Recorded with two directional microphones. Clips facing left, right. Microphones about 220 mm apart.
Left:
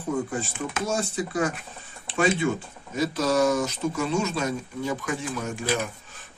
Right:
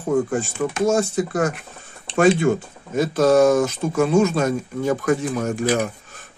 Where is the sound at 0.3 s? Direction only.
45° right (ahead or behind).